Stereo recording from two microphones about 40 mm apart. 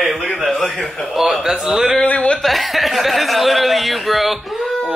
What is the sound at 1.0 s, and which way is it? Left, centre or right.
Speech, centre.